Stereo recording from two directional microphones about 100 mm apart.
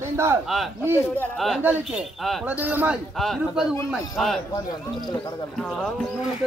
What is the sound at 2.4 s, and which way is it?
Speech, 15° right (ahead or behind).